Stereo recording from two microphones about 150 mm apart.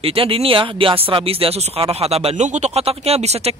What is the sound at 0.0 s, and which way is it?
Speech, 40° right (ahead or behind).